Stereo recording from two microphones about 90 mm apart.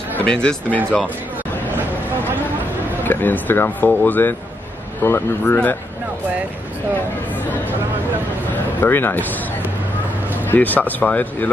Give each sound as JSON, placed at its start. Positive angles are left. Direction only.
{"t": 0.2, "sound": "speech", "side_deg": 10}
{"t": 3.0, "sound": "speech", "side_deg": 20}
{"t": 8.8, "sound": "speech", "side_deg": 25}
{"t": 10.4, "sound": "speech", "side_deg": 20}